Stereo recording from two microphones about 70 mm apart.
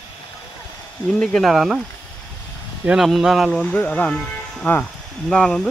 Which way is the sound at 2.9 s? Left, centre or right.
Centre.